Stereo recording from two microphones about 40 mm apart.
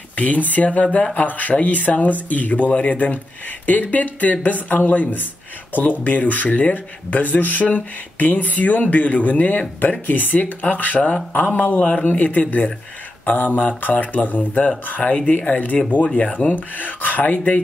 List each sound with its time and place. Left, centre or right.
0.1 s speech: left